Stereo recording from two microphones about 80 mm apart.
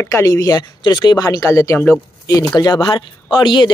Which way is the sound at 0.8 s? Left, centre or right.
Left.